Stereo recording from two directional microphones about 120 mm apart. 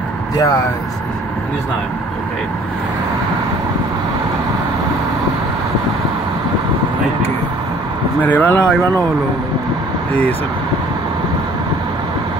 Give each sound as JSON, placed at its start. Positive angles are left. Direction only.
{"t": 0.4, "sound": "speech", "side_deg": 30}
{"t": 8.2, "sound": "speech", "side_deg": 15}